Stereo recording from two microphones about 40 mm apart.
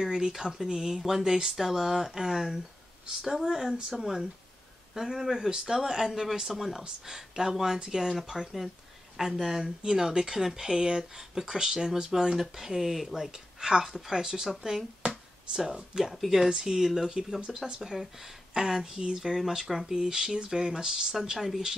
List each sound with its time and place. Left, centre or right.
0.0 s speech: centre
12.4 s speech: centre
13.6 s a woman's voice: centre
13.8 s speech: centre